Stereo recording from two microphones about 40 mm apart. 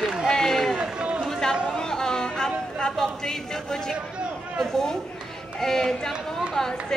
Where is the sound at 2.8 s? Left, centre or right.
Centre.